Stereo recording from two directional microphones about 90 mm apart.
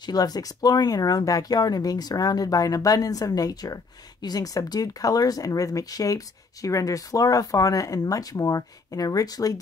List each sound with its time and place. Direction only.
0.0 s speech: 45° left (ahead or behind)